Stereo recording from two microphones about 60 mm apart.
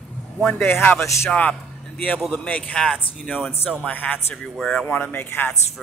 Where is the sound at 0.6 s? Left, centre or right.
Left.